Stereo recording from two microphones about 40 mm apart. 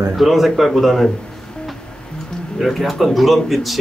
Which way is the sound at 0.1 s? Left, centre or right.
Centre.